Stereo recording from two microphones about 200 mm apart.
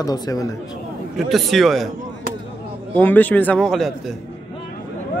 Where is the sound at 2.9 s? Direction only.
10° left (ahead or behind).